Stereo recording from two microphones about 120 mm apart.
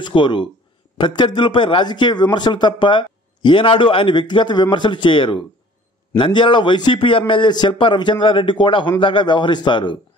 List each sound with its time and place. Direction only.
0.0 s a man's voice: 40° left (ahead or behind)